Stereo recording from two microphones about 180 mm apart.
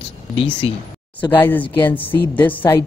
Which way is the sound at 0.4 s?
30° left (ahead or behind).